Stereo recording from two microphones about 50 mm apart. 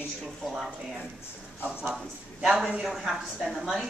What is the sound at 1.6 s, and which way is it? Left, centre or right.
Speech, right.